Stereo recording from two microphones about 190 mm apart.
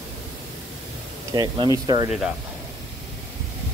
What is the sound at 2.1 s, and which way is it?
Speech, 5° right (ahead or behind).